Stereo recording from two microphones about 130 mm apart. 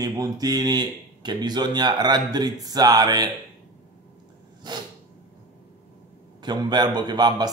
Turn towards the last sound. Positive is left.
turn(degrees=-35)  # may be behind; listen again after turning